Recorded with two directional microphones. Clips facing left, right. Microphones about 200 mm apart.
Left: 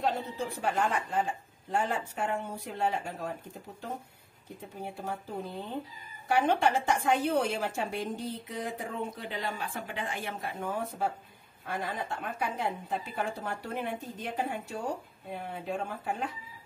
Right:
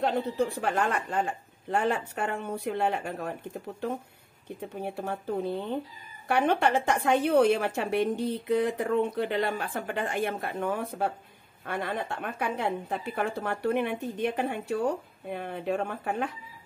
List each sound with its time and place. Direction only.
0.6 s a woman's voice: 65° right (ahead or behind)
4.6 s a woman's voice: 65° right (ahead or behind)